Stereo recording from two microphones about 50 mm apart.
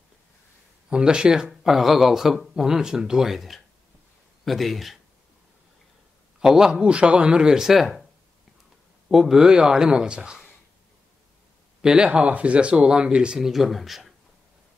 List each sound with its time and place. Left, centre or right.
0.8 s speech: centre
6.4 s speech: centre
9.1 s speech: centre
11.8 s speech: centre
13.4 s speech: centre